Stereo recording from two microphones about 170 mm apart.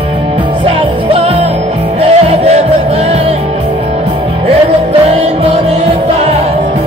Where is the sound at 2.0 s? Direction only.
35° right (ahead or behind).